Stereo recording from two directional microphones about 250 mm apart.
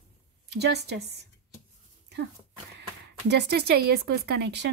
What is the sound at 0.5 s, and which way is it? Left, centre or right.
Speech, right.